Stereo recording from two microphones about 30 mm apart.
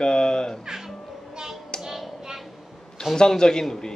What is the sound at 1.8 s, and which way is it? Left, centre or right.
Music, centre.